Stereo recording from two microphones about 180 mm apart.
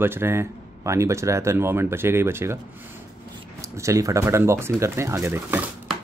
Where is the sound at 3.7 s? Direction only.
15° right (ahead or behind).